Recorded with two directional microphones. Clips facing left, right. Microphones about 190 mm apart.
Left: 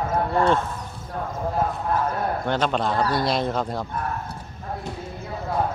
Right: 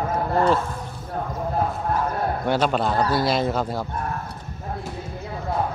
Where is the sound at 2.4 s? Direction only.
10° right (ahead or behind).